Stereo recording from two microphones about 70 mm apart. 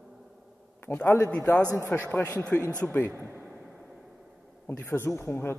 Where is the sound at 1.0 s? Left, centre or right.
Left.